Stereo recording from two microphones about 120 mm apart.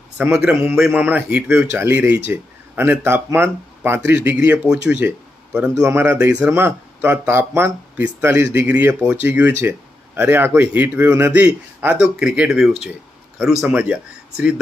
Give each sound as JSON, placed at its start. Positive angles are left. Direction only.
{"t": 0.2, "sound": "a man's voice", "side_deg": -5}
{"t": 1.0, "sound": "a man's voice", "side_deg": -15}